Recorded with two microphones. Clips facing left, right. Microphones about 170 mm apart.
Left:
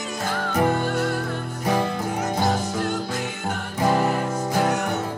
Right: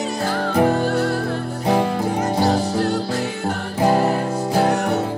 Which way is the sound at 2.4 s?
35° right (ahead or behind).